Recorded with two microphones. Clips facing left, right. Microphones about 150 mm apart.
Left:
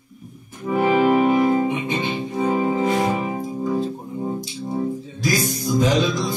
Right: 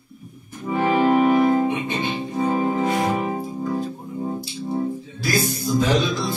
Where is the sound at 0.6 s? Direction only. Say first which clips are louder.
Left 2 dB; 10° left (ahead or behind).